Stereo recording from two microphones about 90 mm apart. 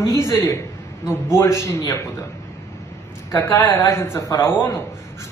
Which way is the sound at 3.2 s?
35° left (ahead or behind).